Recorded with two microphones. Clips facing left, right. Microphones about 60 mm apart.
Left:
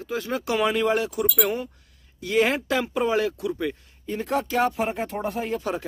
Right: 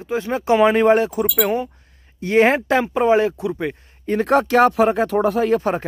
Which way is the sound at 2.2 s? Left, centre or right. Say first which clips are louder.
Right 7 dB; right.